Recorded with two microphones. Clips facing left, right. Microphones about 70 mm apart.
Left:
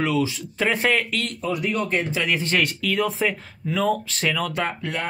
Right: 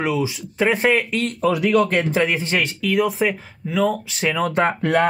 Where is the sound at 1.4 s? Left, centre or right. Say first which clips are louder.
Right 9 dB; right.